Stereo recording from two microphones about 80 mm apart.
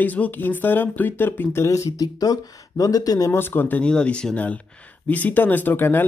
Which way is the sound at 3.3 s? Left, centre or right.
Left.